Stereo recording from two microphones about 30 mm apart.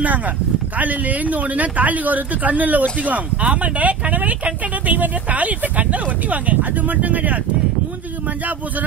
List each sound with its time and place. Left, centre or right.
0.7 s speech: right